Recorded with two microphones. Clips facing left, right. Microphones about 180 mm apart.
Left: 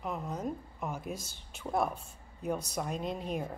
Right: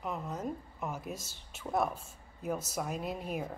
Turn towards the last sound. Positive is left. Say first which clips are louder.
# left 1 dB
turn(degrees=-5)  # may be behind; listen again after turning